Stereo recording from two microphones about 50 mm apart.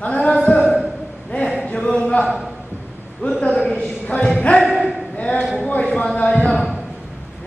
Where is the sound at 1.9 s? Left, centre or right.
Left.